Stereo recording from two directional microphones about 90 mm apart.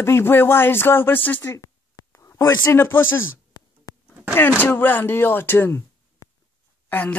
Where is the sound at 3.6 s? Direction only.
50° left (ahead or behind).